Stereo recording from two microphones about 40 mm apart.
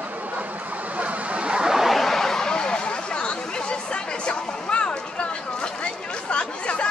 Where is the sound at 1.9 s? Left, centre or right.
Centre; by 6.8 s left.